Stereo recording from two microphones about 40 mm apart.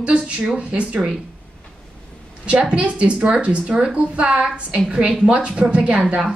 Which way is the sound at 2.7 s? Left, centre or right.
Right.